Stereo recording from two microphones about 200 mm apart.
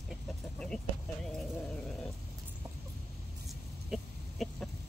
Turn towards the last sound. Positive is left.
turn(degrees=0)  # may be behind; listen again after turning